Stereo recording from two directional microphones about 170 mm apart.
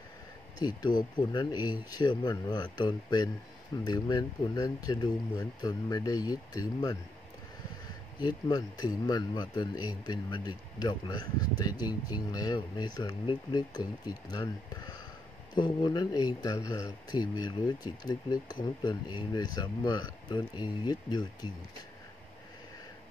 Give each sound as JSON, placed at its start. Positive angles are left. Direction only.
{"t": 0.6, "sound": "speech", "side_deg": 25}
{"t": 8.2, "sound": "speech", "side_deg": 25}